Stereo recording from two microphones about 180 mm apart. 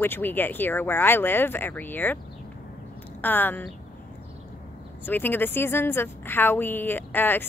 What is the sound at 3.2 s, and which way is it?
Speech, 10° left (ahead or behind).